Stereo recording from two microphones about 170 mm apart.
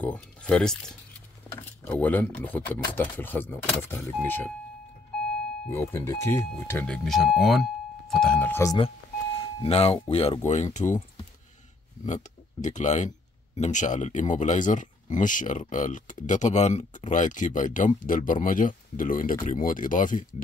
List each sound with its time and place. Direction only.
0.0 s speech: 5° left (ahead or behind)
5.7 s speech: 15° left (ahead or behind)
9.4 s speech: 35° left (ahead or behind)
12.1 s speech: 45° left (ahead or behind)